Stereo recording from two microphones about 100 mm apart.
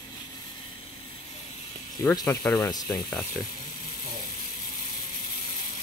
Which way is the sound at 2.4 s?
20° left (ahead or behind).